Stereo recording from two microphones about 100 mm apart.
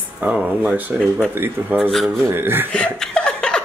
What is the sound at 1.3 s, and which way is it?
Speech, 20° right (ahead or behind).